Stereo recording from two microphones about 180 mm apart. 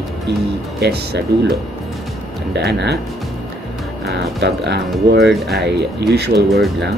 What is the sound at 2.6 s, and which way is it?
Speech, 65° right (ahead or behind).